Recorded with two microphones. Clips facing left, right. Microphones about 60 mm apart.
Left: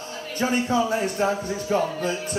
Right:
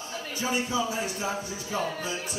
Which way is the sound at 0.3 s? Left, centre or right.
Left.